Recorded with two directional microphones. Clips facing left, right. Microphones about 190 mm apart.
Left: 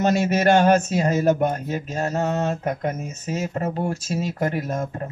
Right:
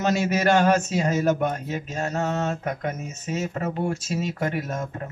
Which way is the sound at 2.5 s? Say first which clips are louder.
Left 3 dB; 45° left (ahead or behind).